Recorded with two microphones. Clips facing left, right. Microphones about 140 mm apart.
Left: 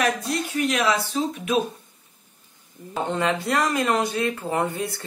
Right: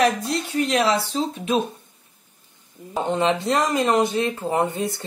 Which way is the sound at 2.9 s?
20° right (ahead or behind).